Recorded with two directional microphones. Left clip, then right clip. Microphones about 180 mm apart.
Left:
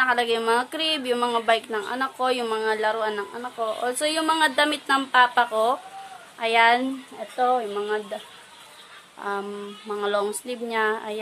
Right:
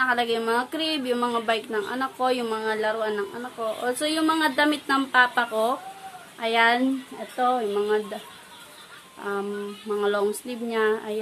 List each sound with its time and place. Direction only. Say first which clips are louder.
0.0 s speech: left 2 dB; 35° left (ahead or behind)
7.3 s speech: even; 20° left (ahead or behind)
9.8 s speech: right 1 dB; 25° left (ahead or behind)